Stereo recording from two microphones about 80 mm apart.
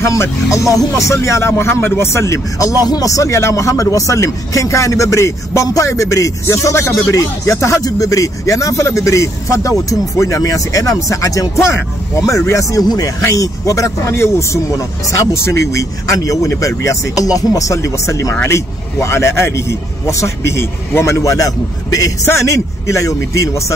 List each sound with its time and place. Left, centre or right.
0.0 s speech: left
2.8 s speech: left
12.8 s speech: left
13.2 s speech: left